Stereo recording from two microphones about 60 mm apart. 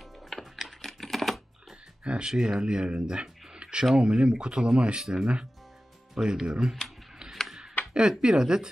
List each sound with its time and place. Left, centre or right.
0.0 s typing: centre
2.0 s speech: centre
7.9 s speech: centre